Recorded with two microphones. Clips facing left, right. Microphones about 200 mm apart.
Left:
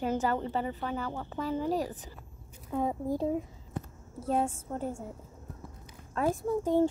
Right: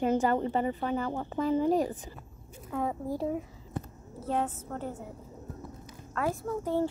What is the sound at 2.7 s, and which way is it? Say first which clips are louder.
Speech: left 2 dB; 20° left (ahead or behind).